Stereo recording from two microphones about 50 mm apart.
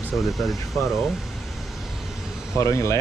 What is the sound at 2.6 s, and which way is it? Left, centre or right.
Speech, left.